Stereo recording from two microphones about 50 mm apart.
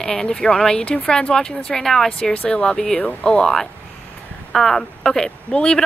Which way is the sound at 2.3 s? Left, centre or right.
Left.